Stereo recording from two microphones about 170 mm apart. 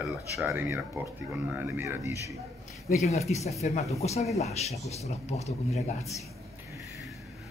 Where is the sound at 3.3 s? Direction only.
40° left (ahead or behind).